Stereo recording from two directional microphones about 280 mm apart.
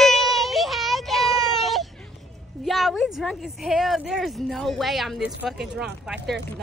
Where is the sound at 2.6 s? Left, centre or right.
Centre.